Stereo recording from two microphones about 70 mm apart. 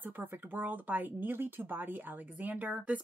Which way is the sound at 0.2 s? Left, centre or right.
Right.